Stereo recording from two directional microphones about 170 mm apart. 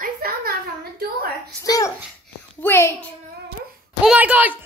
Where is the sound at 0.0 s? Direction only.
60° right (ahead or behind).